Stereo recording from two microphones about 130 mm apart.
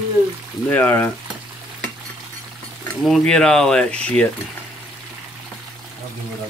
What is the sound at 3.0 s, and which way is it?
Speech, 5° left (ahead or behind).